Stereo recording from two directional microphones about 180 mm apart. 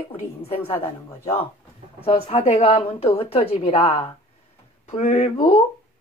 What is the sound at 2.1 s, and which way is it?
Speech, 35° left (ahead or behind).